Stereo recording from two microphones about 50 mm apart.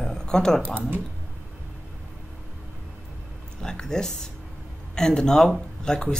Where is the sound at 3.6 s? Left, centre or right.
Centre.